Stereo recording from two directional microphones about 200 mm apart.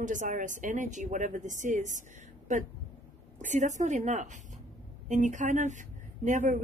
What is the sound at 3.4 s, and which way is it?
Speech, 40° right (ahead or behind).